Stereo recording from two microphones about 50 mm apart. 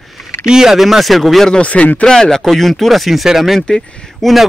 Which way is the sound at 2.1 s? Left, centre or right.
Centre.